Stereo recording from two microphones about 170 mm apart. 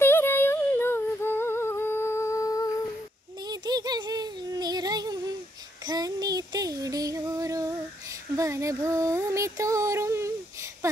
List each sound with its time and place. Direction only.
0.0 s humming: 15° left (ahead or behind)
3.4 s a sound: 25° right (ahead or behind)
5.9 s child singing: 20° right (ahead or behind)